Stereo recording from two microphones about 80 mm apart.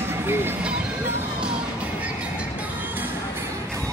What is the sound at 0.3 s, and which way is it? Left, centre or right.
Speech, right.